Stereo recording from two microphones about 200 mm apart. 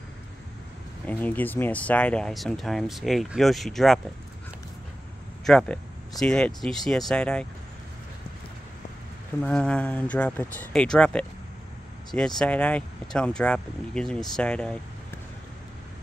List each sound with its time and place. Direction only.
1.0 s speech: 10° left (ahead or behind)
5.4 s speech: 5° left (ahead or behind)
9.4 s speech: 5° left (ahead or behind)
12.4 s speech: 5° left (ahead or behind)